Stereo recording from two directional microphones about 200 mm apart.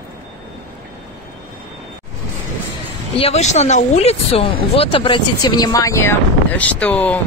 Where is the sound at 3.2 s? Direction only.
35° left (ahead or behind).